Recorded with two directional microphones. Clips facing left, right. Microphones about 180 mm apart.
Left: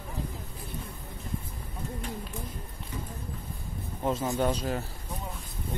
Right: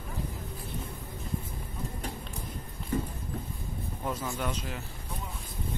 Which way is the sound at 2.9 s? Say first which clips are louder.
Right 9 dB; 55° right (ahead or behind).